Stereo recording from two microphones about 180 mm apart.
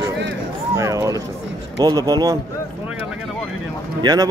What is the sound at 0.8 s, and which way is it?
A man's voice, 20° right (ahead or behind).